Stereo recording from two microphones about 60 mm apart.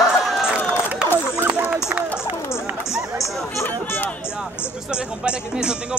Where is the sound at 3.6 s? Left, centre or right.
Left.